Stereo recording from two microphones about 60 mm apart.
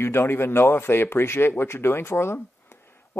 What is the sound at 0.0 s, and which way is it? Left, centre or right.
Speech, left.